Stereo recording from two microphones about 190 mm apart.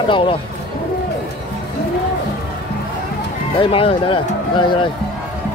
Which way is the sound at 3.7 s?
30° left (ahead or behind).